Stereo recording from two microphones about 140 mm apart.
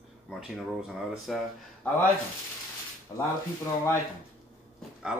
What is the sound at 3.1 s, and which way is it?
Speech, 25° left (ahead or behind).